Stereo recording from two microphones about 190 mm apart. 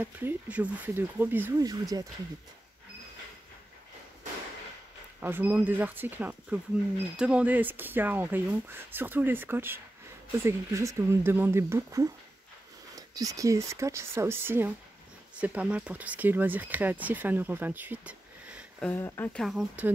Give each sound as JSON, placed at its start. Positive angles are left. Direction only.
{"t": 0.0, "sound": "speech", "side_deg": -10}
{"t": 5.2, "sound": "speech", "side_deg": -10}
{"t": 18.8, "sound": "speech", "side_deg": 10}
{"t": 19.4, "sound": "speech", "side_deg": -5}